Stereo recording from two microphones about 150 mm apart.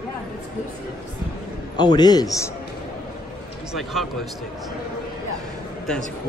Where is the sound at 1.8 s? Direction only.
30° left (ahead or behind).